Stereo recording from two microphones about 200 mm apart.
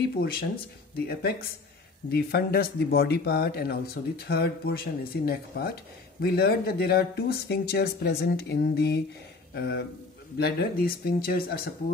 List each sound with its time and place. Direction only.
0.2 s speech: 50° left (ahead or behind)